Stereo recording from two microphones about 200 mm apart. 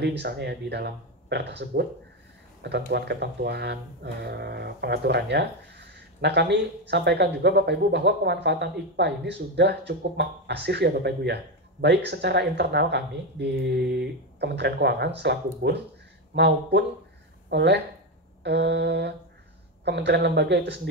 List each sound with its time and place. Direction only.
0.0 s speech: 55° right (ahead or behind)